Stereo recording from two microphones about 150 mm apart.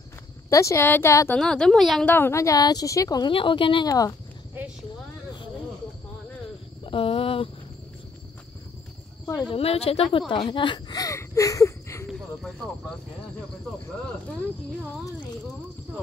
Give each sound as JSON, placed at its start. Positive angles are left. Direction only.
{"t": 0.5, "sound": "a woman's voice", "side_deg": 20}
{"t": 1.4, "sound": "a woman's voice", "side_deg": 5}
{"t": 2.0, "sound": "speech", "side_deg": 15}
{"t": 6.9, "sound": "speech", "side_deg": 40}
{"t": 9.5, "sound": "speech", "side_deg": 40}